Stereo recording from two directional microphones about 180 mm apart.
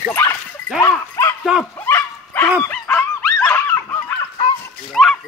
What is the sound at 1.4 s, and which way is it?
Speech, centre (ahead or behind).